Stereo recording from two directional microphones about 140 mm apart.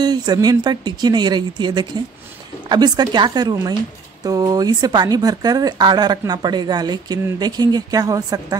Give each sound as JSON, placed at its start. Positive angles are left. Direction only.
{"t": 0.0, "sound": "speech", "side_deg": -30}